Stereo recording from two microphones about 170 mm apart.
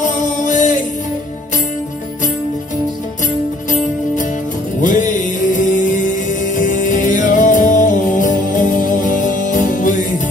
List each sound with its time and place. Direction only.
0.0 s music: 50° left (ahead or behind)
4.8 s music: 50° left (ahead or behind)